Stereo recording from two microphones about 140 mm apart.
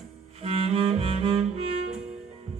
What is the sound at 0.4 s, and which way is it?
Music, 45° right (ahead or behind).